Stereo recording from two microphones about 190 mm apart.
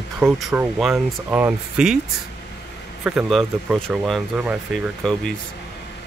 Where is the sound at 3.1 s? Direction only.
Centre (ahead or behind).